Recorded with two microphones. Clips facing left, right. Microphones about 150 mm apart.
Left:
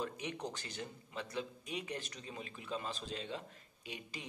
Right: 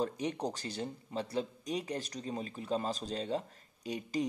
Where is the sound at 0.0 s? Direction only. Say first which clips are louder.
Right 7 dB; 35° right (ahead or behind).